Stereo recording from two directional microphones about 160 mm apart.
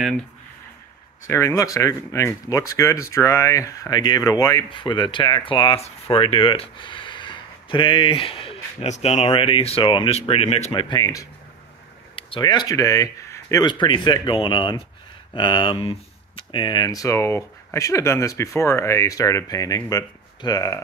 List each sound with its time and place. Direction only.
1.2 s speech: 15° left (ahead or behind); by 10.7 s 40° left (ahead or behind)
10.7 s speech: 30° left (ahead or behind)